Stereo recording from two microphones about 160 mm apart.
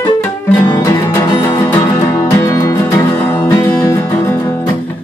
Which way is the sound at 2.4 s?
20° left (ahead or behind).